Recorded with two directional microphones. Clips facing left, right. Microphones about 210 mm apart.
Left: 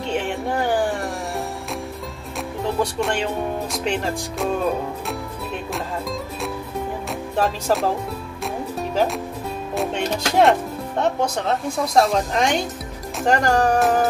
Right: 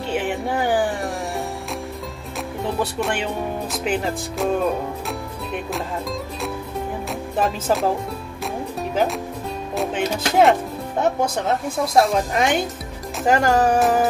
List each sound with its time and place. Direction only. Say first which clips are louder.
0.1 s music: right 1 dB; 5° right (ahead or behind)
2.6 s speech: left 1 dB; 5° right (ahead or behind)
7.3 s speech: even; centre (ahead or behind)
9.8 s music: right 1 dB; centre (ahead or behind)
11.0 s speech: right 1 dB; 5° right (ahead or behind)